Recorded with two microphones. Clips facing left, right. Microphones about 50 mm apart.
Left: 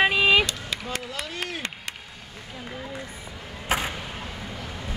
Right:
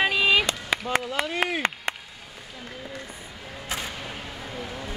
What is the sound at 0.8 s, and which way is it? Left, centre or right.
Run, right.